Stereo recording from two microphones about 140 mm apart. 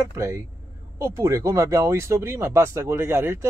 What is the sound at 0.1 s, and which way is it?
Speech, 20° right (ahead or behind).